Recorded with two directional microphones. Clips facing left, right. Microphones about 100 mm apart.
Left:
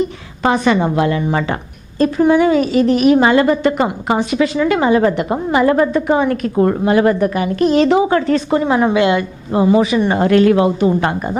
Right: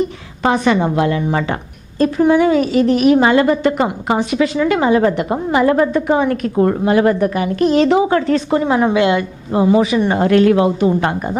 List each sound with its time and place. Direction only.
0.4 s a woman's voice: 15° left (ahead or behind)